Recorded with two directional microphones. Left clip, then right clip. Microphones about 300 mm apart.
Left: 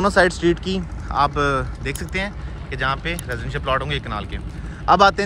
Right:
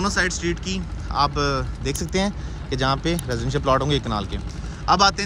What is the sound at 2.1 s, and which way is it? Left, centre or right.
Speech, centre.